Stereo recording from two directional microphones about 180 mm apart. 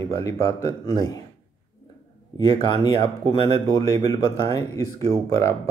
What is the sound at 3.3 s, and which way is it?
Speech, 25° left (ahead or behind).